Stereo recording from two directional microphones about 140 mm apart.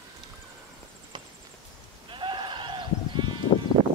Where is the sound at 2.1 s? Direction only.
35° right (ahead or behind).